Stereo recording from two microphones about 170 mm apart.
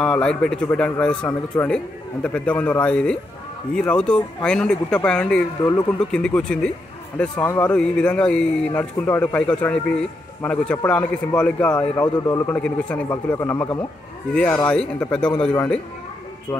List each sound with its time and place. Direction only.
0.0 s speech: 5° left (ahead or behind)
5.6 s speech: 25° left (ahead or behind)
5.9 s speech: 5° left (ahead or behind)